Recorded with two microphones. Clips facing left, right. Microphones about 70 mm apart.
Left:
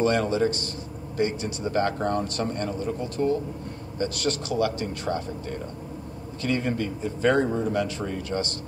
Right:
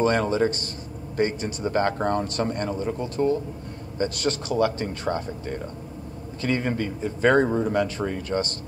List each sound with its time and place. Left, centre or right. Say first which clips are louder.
0.0 s a man's voice: right 1 dB; right